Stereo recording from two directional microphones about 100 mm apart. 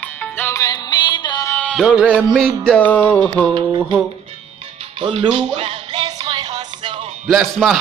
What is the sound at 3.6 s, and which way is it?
Mantra, 50° right (ahead or behind).